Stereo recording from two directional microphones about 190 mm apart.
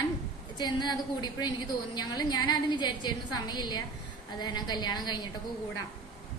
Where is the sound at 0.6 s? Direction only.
20° left (ahead or behind).